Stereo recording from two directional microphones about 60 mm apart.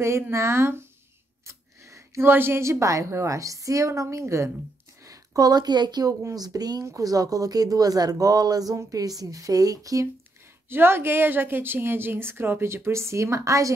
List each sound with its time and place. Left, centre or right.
0.0 s speech: right
1.4 s a sound: right
2.2 s a woman's voice: right
2.6 s a woman's voice: right
5.0 s a sound: right
6.0 s a woman's voice: right
10.7 s a woman's voice: right